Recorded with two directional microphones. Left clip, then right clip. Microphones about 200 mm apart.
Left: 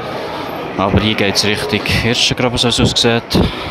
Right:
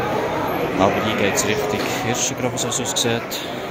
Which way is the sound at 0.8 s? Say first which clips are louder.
Left 4 dB; 50° left (ahead or behind).